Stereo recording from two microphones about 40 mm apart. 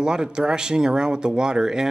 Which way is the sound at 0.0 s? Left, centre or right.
Centre.